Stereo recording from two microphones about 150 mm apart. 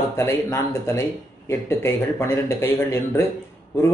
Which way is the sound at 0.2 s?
15° left (ahead or behind).